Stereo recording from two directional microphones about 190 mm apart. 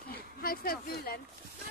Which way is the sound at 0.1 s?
50° left (ahead or behind).